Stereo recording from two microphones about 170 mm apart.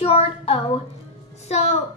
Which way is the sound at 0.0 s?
35° left (ahead or behind).